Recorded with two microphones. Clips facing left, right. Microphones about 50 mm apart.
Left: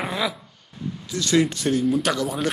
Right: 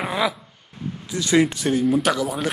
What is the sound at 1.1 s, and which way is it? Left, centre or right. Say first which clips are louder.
Speech: right 2 dB; centre.